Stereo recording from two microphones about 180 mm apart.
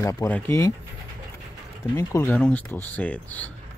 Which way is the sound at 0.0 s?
15° left (ahead or behind).